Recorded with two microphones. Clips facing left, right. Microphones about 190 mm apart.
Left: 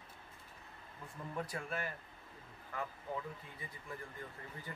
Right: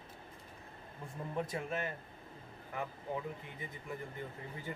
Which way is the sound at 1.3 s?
25° right (ahead or behind).